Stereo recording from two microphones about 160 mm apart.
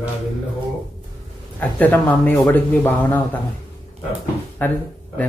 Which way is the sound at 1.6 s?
10° left (ahead or behind).